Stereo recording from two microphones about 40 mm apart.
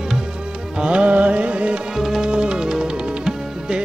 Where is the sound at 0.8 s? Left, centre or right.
Right.